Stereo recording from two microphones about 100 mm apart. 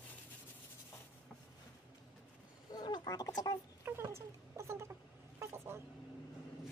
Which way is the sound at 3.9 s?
25° right (ahead or behind).